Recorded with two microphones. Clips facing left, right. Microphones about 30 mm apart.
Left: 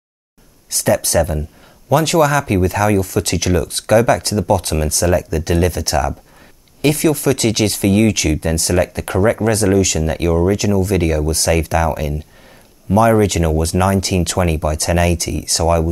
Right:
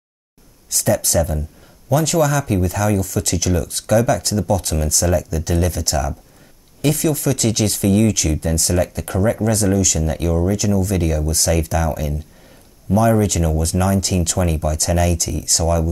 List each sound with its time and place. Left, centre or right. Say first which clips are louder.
0.8 s speech: left 3 dB; centre
13.4 s speech: left 4 dB; left
13.7 s speech: left 3 dB; left